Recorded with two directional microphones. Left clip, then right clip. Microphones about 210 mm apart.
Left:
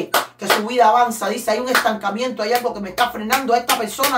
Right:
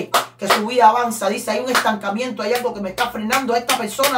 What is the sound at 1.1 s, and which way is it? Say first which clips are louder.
Speech: even; 15° left (ahead or behind).